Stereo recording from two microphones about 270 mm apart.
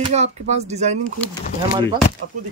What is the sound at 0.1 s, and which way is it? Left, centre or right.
Speech, right.